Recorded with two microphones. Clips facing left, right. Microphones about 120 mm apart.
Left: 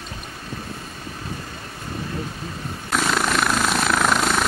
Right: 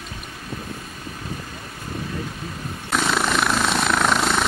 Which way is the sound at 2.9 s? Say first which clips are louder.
Even; centre (ahead or behind).